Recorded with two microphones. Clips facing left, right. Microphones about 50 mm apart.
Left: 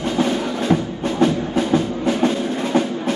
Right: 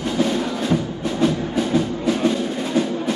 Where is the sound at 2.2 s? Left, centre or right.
Left.